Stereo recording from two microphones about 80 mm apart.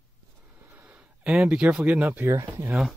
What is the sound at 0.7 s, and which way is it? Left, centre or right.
Speech, right.